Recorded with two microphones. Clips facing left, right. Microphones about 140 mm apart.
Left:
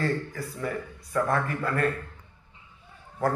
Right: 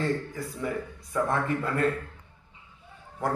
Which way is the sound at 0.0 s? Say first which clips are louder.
Even; 20° right (ahead or behind).